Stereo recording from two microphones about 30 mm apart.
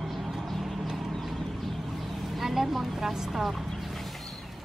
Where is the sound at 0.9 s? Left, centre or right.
Centre.